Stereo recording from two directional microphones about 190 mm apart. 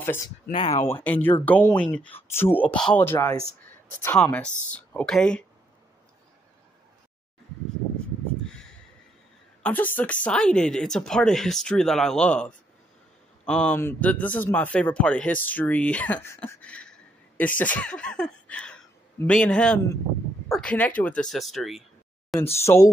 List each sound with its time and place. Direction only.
0.0 s speech: 15° left (ahead or behind)
0.5 s speech: 30° left (ahead or behind)
1.0 s speech: 10° left (ahead or behind)
9.6 s a woman's voice: 10° left (ahead or behind)
22.7 s speech: 15° left (ahead or behind)